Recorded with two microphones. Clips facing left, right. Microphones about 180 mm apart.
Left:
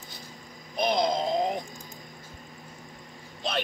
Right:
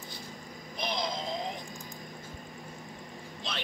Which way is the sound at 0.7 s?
50° left (ahead or behind).